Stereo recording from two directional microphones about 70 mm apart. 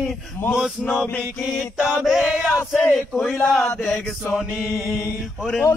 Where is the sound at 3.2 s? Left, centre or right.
Centre.